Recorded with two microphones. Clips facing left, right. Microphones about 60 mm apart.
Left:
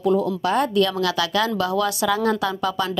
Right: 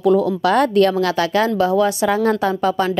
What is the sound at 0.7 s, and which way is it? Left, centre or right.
A woman's voice, right.